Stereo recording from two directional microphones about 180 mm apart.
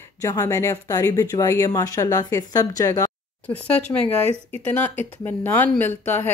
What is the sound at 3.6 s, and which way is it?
A woman's voice, 5° left (ahead or behind).